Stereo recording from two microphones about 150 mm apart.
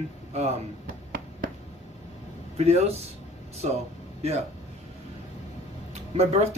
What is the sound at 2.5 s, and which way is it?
Speech, 45° right (ahead or behind).